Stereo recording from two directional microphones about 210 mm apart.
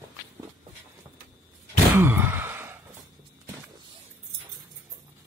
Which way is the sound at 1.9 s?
10° right (ahead or behind).